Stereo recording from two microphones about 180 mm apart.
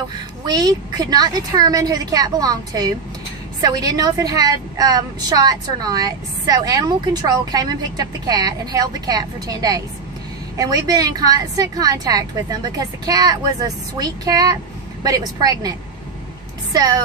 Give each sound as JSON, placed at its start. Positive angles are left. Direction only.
{"t": 0.5, "sound": "a woman's voice", "side_deg": -20}
{"t": 16.7, "sound": "a woman's voice", "side_deg": -20}